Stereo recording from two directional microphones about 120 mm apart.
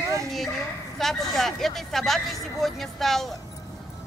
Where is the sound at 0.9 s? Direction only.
Centre (ahead or behind).